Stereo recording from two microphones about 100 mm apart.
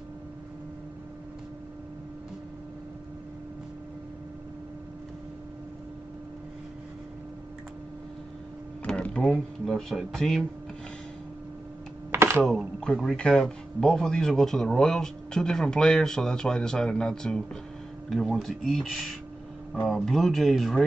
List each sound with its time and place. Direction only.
8.8 s speech: 10° left (ahead or behind)
12.1 s computer keyboard: 25° right (ahead or behind)
12.4 s speech: centre (ahead or behind)